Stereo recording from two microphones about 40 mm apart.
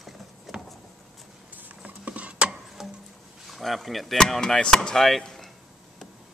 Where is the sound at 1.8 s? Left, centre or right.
Right.